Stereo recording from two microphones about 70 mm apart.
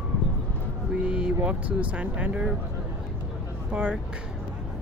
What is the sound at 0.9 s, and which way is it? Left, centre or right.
Speech, centre.